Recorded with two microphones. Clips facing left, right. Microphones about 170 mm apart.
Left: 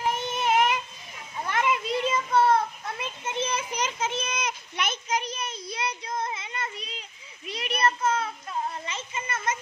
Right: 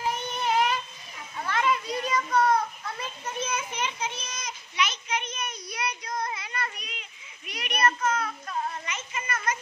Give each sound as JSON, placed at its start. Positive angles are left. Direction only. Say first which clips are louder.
{"t": 0.1, "sound": "child singing", "louder": "left 2 dB", "side_deg": 20}
{"t": 1.4, "sound": "children playing", "louder": "even", "side_deg": 20}
{"t": 6.9, "sound": "a sound", "louder": "left 2 dB", "side_deg": 30}